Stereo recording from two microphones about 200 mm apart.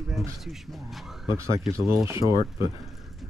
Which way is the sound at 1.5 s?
15° right (ahead or behind).